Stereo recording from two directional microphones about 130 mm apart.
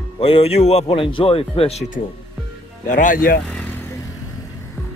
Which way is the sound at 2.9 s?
90° left.